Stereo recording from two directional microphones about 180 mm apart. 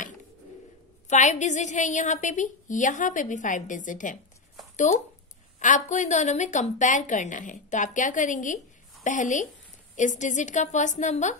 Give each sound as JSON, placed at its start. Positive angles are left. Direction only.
{"t": 1.0, "sound": "a woman's voice", "side_deg": 40}